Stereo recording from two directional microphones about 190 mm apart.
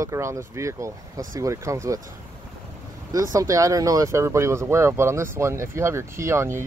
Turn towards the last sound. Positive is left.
turn(degrees=-15)  # may be behind; listen again after turning